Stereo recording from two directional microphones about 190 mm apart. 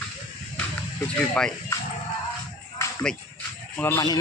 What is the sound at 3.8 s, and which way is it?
Speech, 15° left (ahead or behind).